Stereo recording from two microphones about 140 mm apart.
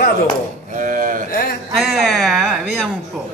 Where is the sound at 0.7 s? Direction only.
70° right (ahead or behind).